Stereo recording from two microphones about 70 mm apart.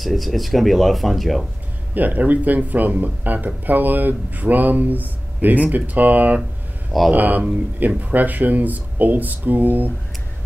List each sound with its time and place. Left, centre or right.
0.0 s speech: centre
2.0 s speech: right